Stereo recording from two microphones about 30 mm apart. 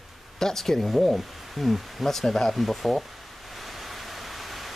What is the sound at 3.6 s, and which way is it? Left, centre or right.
Waterfall, centre.